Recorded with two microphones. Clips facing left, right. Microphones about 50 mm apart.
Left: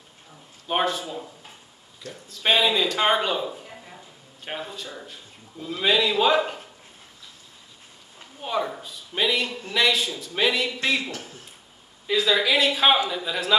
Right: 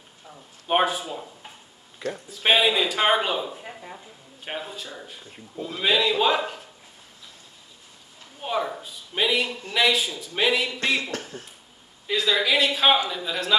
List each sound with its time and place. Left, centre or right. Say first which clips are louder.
0.7 s a man's voice: right 2 dB; centre
2.2 s a man's voice: right 1 dB; centre
8.4 s a man's voice: even; centre
11.1 s speech: right 3 dB; right
12.1 s a man's voice: left 1 dB; centre